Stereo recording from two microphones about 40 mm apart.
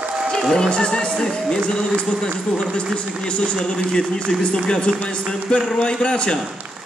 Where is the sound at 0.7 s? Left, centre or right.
Left.